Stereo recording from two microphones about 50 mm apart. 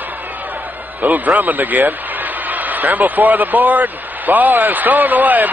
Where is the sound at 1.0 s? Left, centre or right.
Right.